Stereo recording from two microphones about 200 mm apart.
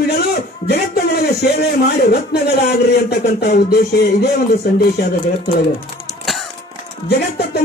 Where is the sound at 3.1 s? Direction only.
50° left (ahead or behind).